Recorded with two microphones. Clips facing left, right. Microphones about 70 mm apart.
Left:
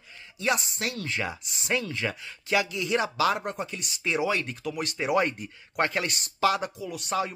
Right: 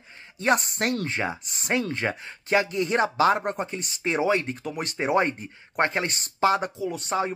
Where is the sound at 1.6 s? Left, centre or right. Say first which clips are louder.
Right 2 dB; right.